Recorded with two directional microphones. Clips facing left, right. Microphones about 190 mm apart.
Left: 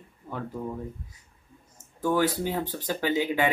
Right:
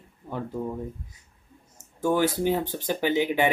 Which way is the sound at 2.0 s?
20° right (ahead or behind).